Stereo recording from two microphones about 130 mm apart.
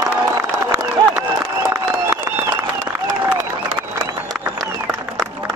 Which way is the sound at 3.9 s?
25° right (ahead or behind).